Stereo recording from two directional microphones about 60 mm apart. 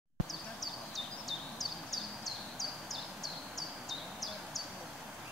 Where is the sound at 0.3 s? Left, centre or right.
Centre.